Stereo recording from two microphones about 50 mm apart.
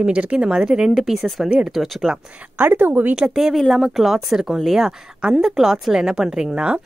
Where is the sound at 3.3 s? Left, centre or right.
Centre.